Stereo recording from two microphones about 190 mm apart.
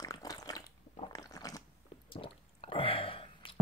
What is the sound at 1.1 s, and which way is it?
Biting, 20° left (ahead or behind).